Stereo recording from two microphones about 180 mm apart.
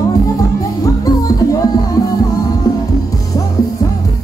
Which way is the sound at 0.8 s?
20° left (ahead or behind).